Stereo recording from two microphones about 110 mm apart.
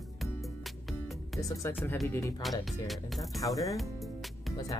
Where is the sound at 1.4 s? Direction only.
30° left (ahead or behind).